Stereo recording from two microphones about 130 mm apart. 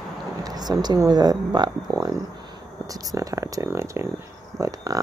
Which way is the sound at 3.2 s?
25° right (ahead or behind).